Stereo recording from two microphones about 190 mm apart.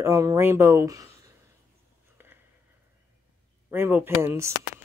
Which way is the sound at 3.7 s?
10° right (ahead or behind).